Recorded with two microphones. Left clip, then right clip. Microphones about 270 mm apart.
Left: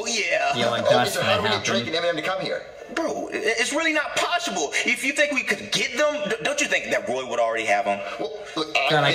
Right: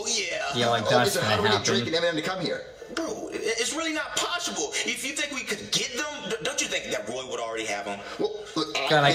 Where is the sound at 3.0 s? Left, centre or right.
Left.